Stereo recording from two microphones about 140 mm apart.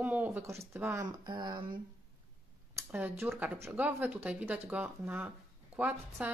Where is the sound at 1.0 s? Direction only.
30° right (ahead or behind).